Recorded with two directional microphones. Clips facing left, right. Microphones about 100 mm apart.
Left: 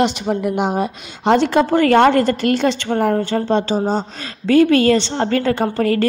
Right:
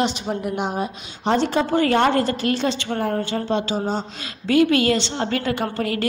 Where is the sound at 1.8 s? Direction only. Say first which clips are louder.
Left 6 dB; 75° left (ahead or behind).